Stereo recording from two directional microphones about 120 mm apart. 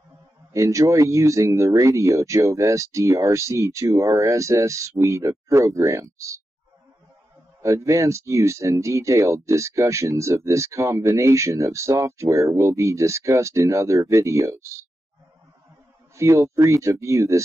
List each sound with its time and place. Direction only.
0.5 s speech: 25° right (ahead or behind)
7.6 s speech: 25° right (ahead or behind)
16.2 s speech: 25° right (ahead or behind)